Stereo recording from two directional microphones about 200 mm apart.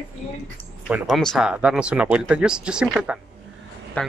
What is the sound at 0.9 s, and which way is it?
Speech, centre (ahead or behind).